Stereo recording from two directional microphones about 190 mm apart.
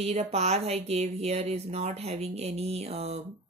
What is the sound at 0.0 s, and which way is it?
A woman's voice, 35° right (ahead or behind).